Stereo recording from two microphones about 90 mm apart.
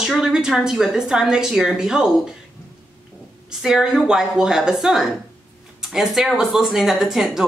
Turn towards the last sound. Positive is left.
turn(degrees=-5)  # may be behind; listen again after turning